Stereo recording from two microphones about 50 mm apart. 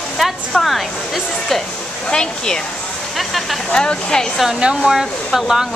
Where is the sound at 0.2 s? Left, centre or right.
Centre.